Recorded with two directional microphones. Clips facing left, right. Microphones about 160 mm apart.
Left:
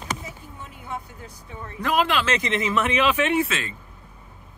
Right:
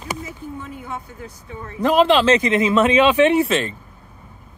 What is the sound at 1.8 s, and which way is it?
Speech, 30° right (ahead or behind).